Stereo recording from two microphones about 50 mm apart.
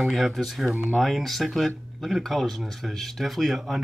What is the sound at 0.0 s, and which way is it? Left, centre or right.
Speech, centre.